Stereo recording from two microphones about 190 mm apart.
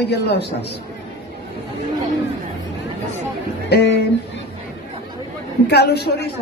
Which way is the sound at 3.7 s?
60° left (ahead or behind).